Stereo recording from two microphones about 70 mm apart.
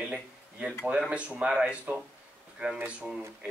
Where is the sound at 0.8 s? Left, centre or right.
Centre.